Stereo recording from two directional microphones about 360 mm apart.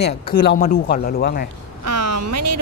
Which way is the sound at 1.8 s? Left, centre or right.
Right.